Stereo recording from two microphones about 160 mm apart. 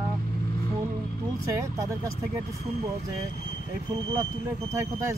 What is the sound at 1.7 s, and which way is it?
Speech, 20° right (ahead or behind).